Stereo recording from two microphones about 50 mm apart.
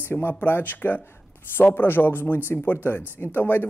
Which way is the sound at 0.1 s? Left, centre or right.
Left.